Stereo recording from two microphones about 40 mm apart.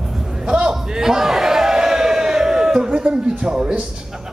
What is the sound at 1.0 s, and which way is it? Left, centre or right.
Crowd, centre.